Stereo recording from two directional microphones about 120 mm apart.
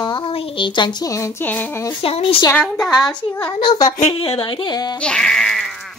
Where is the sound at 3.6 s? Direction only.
35° left (ahead or behind).